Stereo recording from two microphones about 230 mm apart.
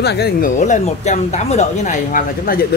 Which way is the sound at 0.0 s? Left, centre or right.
Left.